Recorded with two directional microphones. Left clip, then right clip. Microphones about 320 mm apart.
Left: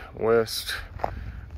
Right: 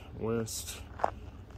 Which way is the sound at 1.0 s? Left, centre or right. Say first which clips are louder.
Even; left.